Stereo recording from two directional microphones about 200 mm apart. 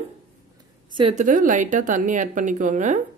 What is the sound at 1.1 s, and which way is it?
Speech, 40° right (ahead or behind).